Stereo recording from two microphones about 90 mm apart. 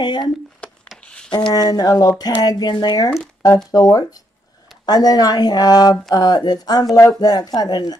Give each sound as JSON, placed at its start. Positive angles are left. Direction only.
{"t": 0.0, "sound": "speech", "side_deg": 55}
{"t": 1.0, "sound": "a sound", "side_deg": 10}
{"t": 1.5, "sound": "speech", "side_deg": 45}